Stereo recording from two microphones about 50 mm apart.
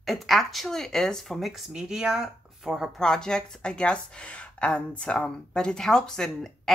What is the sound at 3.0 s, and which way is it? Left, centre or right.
Speech, centre.